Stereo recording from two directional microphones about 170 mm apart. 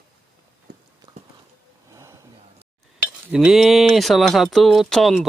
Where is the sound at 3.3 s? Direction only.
5° right (ahead or behind).